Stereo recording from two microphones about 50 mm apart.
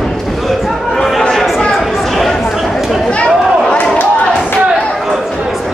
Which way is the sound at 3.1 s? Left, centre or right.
Left.